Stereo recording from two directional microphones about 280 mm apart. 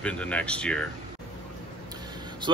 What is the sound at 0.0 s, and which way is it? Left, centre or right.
Speech, centre.